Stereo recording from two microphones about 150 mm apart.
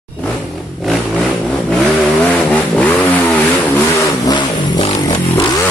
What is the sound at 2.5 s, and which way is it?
Vehicle, 10° left (ahead or behind).